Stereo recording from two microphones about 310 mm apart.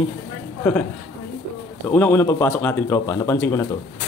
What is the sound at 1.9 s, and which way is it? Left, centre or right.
Speech, centre.